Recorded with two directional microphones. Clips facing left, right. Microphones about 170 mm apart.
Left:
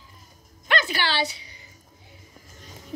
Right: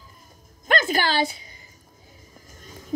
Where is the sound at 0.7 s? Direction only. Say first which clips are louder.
Right 3 dB; 45° right (ahead or behind).